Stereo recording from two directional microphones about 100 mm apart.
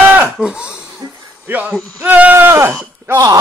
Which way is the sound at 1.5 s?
15° right (ahead or behind).